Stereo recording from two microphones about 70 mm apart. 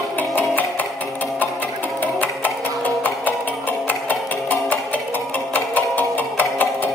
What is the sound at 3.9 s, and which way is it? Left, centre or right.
Music, left.